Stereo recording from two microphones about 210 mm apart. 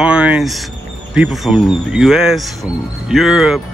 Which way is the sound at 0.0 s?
5° right (ahead or behind).